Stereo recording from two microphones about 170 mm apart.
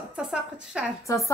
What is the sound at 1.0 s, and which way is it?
Speech, 15° left (ahead or behind).